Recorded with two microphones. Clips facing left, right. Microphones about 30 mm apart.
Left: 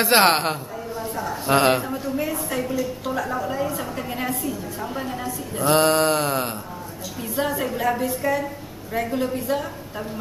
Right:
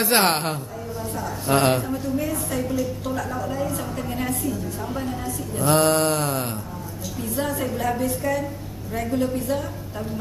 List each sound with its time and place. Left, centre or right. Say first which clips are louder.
0.0 s a woman's voice: left 3 dB; centre